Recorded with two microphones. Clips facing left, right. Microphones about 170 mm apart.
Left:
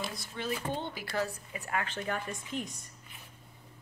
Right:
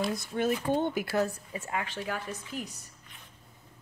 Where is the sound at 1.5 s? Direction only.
20° right (ahead or behind).